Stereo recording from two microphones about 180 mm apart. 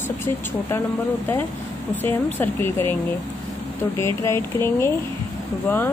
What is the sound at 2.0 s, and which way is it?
Speech, 10° left (ahead or behind).